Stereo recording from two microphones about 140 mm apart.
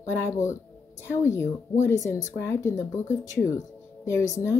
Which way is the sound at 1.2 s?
20° left (ahead or behind).